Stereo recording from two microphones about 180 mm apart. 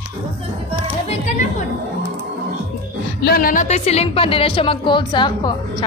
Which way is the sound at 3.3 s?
55° left (ahead or behind).